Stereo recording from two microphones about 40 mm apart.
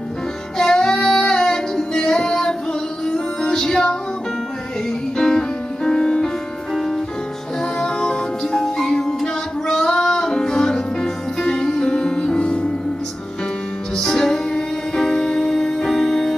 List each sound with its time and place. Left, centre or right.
0.6 s child singing: centre
3.1 s music: centre
5.1 s music: centre
6.7 s music: centre
7.8 s music: centre
13.9 s music: centre